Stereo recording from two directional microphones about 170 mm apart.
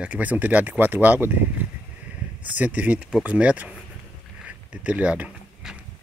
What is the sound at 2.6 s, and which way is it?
Speech, 10° right (ahead or behind).